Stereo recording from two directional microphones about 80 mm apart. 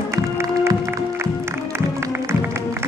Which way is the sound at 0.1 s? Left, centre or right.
Right.